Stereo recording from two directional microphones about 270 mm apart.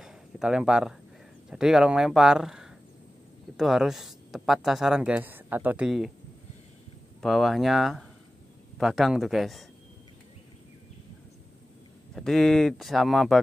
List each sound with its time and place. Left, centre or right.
0.0 s a sound: centre
1.5 s speech: centre
7.2 s speech: centre
12.2 s speech: centre